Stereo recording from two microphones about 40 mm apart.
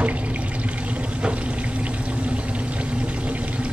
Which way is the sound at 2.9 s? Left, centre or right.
Right.